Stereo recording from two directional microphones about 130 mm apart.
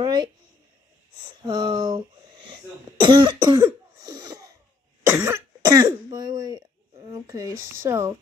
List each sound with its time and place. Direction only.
0.0 s a sound: 35° right (ahead or behind)
1.4 s speech: 35° right (ahead or behind)
4.0 s wheeze: 30° right (ahead or behind)
5.0 s throat clearing: 20° right (ahead or behind)
7.1 s speech: 25° right (ahead or behind)